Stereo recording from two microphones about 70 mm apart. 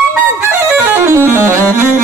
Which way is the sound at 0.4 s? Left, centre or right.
Right.